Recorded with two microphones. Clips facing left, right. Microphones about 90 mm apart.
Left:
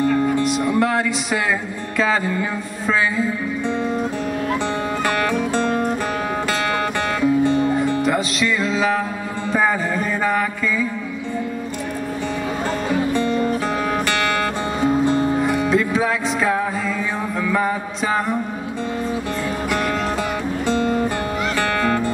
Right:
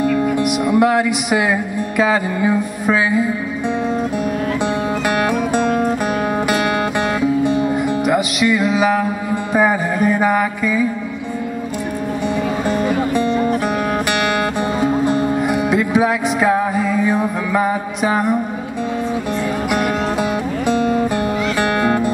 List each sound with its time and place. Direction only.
0.2 s music: 15° right (ahead or behind)
5.0 s music: 15° right (ahead or behind)
7.2 s music: 15° right (ahead or behind)
12.6 s music: 15° right (ahead or behind)
15.0 s music: 15° right (ahead or behind)
19.7 s music: 15° right (ahead or behind)